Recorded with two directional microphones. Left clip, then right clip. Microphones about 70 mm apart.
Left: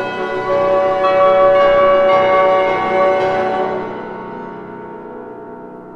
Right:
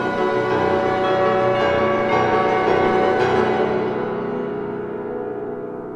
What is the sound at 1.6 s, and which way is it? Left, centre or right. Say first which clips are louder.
Music: left 8 dB; left.